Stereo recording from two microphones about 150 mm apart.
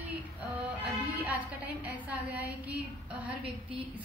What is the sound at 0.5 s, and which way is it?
Music, 10° right (ahead or behind).